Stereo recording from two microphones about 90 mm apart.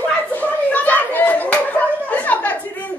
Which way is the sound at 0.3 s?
20° left (ahead or behind).